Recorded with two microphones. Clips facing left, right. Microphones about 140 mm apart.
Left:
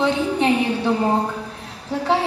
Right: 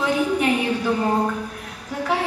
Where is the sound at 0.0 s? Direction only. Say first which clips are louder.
Left 1 dB; 30° left (ahead or behind).